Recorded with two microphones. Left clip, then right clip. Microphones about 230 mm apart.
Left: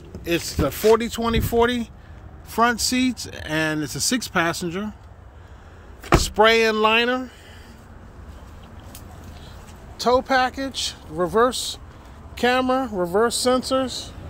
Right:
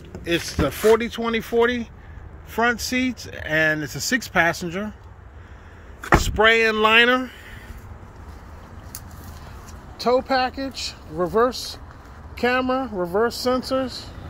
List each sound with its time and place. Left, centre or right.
0.2 s speech: centre
6.1 s speech: centre
10.0 s speech: centre
10.7 s speech: left
11.1 s speech: centre
11.5 s speech: left
12.4 s speech: centre